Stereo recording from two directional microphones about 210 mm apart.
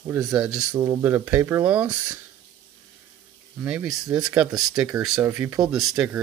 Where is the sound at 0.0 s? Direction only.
15° right (ahead or behind).